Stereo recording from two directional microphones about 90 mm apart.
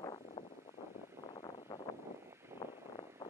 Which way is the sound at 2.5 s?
30° right (ahead or behind).